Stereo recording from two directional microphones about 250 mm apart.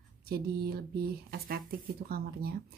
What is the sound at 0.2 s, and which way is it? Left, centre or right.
Speech, right.